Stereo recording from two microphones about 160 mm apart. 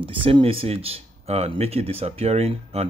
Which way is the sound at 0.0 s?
35° right (ahead or behind).